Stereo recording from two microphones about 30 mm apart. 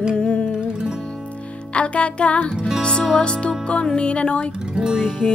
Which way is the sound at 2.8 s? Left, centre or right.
Left.